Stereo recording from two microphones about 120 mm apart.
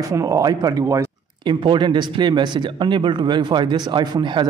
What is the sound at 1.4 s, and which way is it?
Speech, 40° right (ahead or behind).